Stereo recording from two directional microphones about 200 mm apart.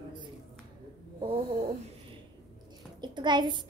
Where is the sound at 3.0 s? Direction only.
20° right (ahead or behind).